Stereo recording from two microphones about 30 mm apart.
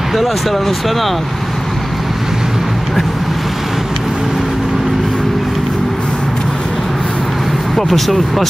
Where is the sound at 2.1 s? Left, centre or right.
Centre.